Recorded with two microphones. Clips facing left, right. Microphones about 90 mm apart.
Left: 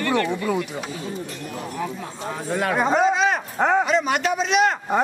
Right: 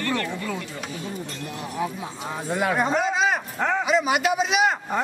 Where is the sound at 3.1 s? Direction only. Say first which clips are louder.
Left 2 dB; centre (ahead or behind).